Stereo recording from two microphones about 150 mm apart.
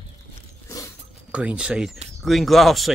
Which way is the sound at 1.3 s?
10° right (ahead or behind).